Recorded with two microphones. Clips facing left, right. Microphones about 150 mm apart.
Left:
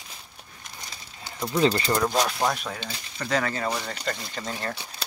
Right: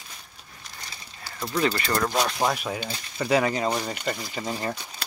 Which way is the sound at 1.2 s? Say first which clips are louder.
Left 3 dB; 20° left (ahead or behind).